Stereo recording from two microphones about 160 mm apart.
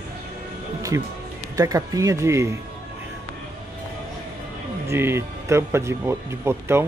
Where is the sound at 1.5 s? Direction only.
20° right (ahead or behind).